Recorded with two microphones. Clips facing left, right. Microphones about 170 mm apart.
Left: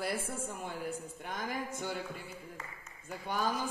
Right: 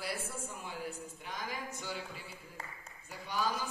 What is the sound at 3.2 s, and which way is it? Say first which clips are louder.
Speech: left 1 dB; 50° left (ahead or behind).